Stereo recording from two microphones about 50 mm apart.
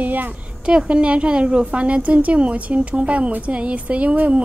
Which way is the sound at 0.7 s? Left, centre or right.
Right.